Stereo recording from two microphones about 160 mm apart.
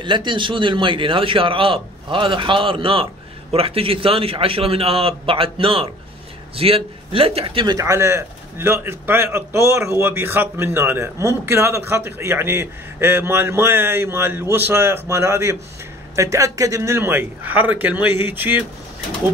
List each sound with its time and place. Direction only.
0.0 s a man's voice: 30° right (ahead or behind); by 18.6 s 10° right (ahead or behind)